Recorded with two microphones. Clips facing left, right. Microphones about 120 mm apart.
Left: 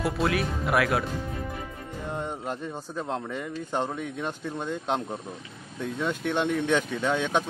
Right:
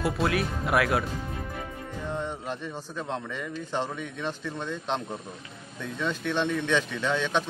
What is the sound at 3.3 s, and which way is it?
Speech, 40° left (ahead or behind).